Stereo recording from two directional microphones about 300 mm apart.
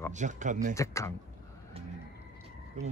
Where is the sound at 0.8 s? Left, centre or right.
Centre.